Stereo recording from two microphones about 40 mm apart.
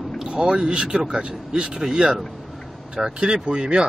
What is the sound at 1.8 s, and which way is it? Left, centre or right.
Speech, centre.